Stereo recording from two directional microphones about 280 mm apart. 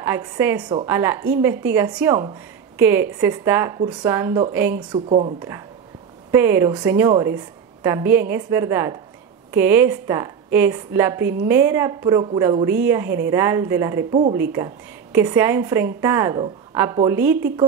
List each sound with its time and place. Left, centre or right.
0.0 s a woman's voice: centre
4.9 s a woman's voice: right
6.3 s a woman's voice: centre